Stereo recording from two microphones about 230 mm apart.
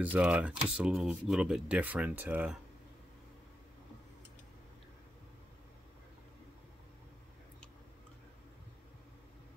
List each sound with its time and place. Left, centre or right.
0.0 s speech: centre